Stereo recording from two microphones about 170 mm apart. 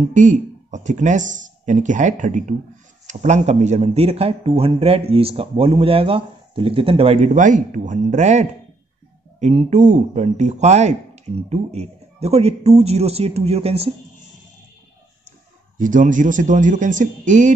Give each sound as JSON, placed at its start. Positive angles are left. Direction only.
{"t": 0.1, "sound": "speech", "side_deg": -45}
{"t": 15.8, "sound": "speech", "side_deg": -50}